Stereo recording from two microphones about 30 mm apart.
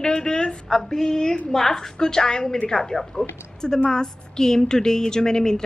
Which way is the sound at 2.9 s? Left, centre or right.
Centre.